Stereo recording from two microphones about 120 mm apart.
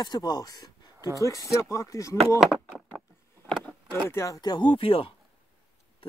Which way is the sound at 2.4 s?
Centre (ahead or behind).